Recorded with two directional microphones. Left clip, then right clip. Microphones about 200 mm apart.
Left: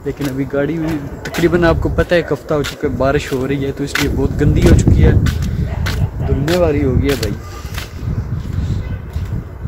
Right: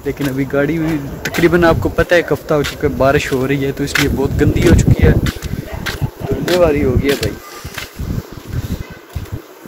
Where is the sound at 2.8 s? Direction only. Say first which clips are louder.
Right 3 dB; 15° right (ahead or behind).